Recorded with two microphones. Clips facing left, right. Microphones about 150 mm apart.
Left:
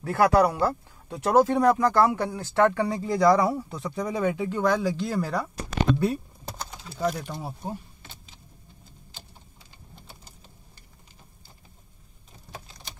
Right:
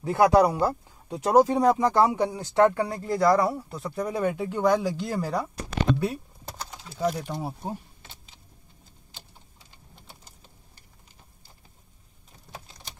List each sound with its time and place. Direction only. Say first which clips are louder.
0.0 s speech: right 1 dB; 15° right (ahead or behind)
7.1 s speech: right 1 dB; 20° right (ahead or behind)